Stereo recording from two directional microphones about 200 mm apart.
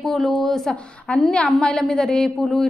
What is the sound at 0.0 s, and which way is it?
A woman's voice, centre (ahead or behind).